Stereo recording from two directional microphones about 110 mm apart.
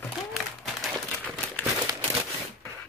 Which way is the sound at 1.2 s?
15° left (ahead or behind).